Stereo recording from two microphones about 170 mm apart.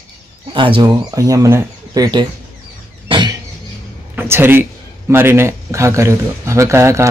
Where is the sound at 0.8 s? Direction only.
20° right (ahead or behind).